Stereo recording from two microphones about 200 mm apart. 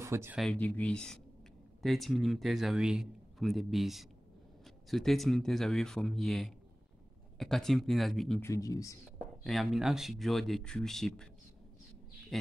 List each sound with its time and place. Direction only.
0.0 s speech: 10° right (ahead or behind)
0.4 s speech: 5° left (ahead or behind)
8.4 s speech: 15° left (ahead or behind)
9.4 s speech: centre (ahead or behind)
12.3 s speech: centre (ahead or behind)